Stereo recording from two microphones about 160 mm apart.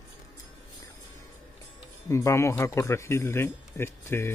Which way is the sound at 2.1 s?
20° left (ahead or behind).